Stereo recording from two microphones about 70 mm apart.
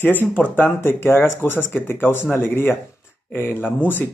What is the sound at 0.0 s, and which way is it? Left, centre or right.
Speech, left.